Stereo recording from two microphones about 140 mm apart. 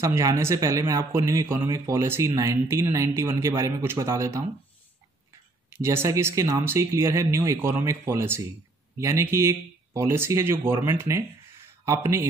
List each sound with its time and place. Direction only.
0.0 s a man's voice: 20° right (ahead or behind)
5.7 s a man's voice: 15° right (ahead or behind)